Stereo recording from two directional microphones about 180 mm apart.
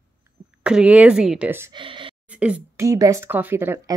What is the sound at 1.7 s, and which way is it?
Speech, 25° right (ahead or behind).